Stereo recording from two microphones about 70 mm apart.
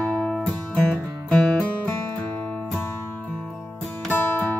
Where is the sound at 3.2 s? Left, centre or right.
Centre.